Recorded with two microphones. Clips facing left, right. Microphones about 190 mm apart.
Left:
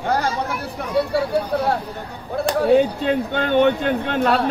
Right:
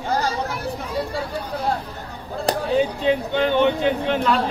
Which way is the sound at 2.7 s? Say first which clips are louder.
Left 3 dB; 50° left (ahead or behind).